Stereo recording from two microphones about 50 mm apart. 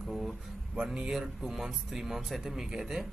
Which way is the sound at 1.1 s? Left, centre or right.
Centre.